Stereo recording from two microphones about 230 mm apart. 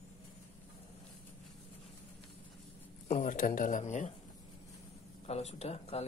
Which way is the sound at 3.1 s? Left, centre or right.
Left.